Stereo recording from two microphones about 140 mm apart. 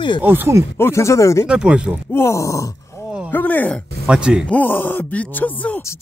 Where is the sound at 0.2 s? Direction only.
15° right (ahead or behind).